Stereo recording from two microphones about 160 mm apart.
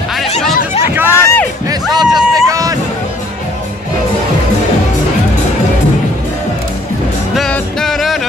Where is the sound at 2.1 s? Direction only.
20° right (ahead or behind).